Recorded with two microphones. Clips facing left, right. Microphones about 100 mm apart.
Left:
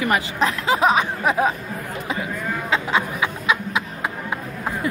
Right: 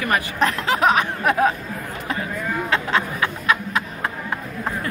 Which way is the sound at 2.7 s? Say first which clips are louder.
Left 1 dB; 10° left (ahead or behind).